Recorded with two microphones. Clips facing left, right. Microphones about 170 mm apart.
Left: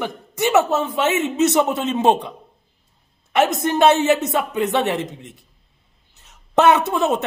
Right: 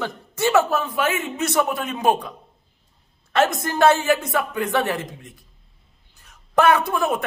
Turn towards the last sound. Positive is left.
turn(degrees=25)  # may be behind; listen again after turning